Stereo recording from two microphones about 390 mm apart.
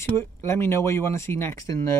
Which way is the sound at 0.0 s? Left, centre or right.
Centre.